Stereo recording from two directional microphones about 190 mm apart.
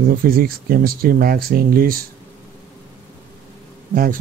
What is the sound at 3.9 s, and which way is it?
Speech, 50° right (ahead or behind).